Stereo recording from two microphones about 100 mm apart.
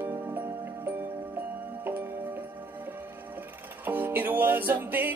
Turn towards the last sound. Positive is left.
turn(degrees=-20)  # may be behind; listen again after turning